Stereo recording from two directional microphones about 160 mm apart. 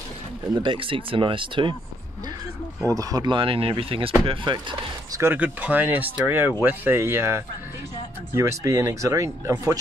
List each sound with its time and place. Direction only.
0.6 s speech: 30° right (ahead or behind)
2.9 s speech: 20° right (ahead or behind)
5.2 s speech: 10° right (ahead or behind)